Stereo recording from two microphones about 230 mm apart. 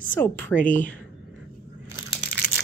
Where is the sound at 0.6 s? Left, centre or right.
Left.